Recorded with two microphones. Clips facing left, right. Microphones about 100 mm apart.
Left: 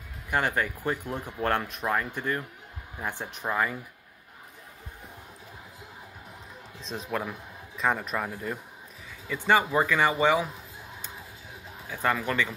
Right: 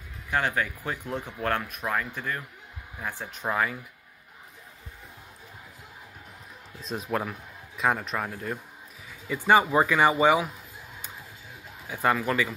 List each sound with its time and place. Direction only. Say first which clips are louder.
0.3 s speech: even; 15° left (ahead or behind)
3.4 s a man's voice: right 1 dB; centre (ahead or behind)
6.9 s a man's voice: right 2 dB; 5° right (ahead or behind)
9.3 s speech: right 3 dB; 15° right (ahead or behind)
11.9 s a man's voice: right 2 dB; 15° right (ahead or behind)